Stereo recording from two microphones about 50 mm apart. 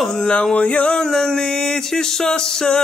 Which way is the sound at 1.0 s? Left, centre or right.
Centre.